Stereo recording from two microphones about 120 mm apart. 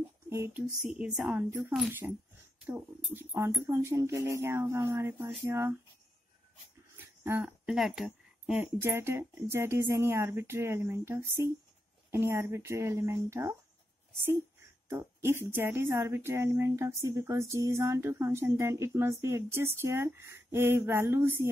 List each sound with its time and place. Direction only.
0.3 s speech: 20° right (ahead or behind)
0.7 s a woman's voice: 5° right (ahead or behind)
1.7 s speech: 15° right (ahead or behind)
7.2 s speech: 20° right (ahead or behind)
7.6 s speech: 5° right (ahead or behind)
8.8 s speech: 20° right (ahead or behind)
14.9 s speech: 20° right (ahead or behind)